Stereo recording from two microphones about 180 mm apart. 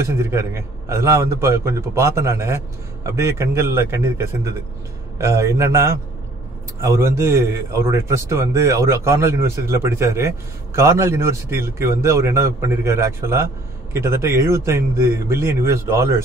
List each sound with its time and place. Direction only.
0.1 s a man's voice: 15° right (ahead or behind)